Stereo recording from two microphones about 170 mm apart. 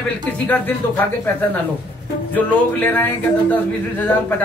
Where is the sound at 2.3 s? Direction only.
10° left (ahead or behind).